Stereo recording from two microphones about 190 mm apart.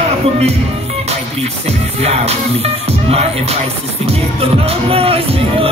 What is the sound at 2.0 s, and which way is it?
Music, 35° right (ahead or behind).